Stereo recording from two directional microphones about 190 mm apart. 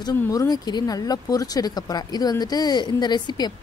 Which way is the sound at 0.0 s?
20° left (ahead or behind).